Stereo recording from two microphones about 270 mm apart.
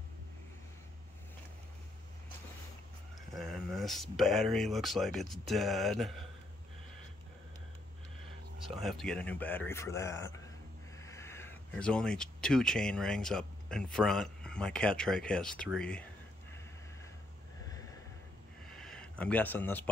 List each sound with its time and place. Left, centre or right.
3.3 s speech: centre
8.6 s a man's voice: centre
18.7 s a sound: centre